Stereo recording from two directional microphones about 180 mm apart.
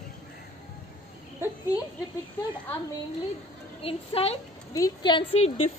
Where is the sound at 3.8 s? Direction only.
35° left (ahead or behind).